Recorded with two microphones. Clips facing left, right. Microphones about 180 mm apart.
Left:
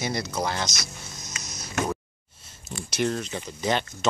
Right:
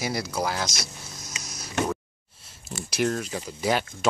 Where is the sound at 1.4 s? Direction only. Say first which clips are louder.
Even; 5° right (ahead or behind).